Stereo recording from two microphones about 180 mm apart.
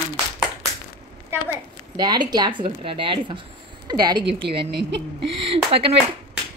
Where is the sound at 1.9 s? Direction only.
25° right (ahead or behind).